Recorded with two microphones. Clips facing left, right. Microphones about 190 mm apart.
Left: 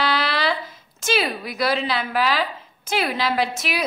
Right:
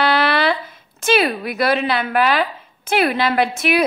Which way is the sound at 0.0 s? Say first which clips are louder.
Right 5 dB; 60° right (ahead or behind).